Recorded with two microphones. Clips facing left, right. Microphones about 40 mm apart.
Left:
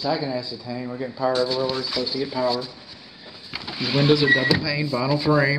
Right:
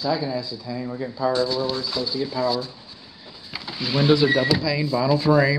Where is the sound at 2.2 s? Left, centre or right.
Centre.